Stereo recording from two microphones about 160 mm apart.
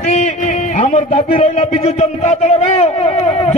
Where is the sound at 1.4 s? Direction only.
45° left (ahead or behind).